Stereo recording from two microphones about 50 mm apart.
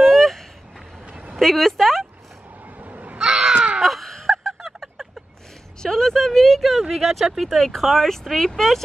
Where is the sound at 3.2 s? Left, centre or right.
Centre.